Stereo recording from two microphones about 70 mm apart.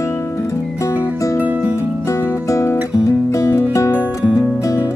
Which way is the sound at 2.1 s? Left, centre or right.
Left.